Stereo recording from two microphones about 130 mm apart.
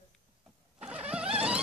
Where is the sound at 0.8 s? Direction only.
10° right (ahead or behind).